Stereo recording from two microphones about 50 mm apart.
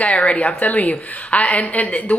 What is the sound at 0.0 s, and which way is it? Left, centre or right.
Speech, left.